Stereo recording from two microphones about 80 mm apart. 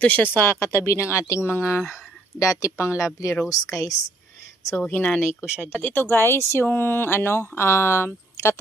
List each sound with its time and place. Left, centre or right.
0.0 s a woman's voice: left
4.8 s speech: centre
5.3 s speech: centre
5.7 s speech: left